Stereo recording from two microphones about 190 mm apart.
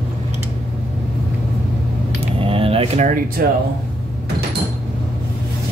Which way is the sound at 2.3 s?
30° right (ahead or behind).